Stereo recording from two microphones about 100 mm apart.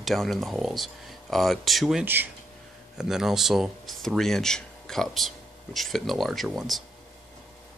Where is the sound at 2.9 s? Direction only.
5° right (ahead or behind).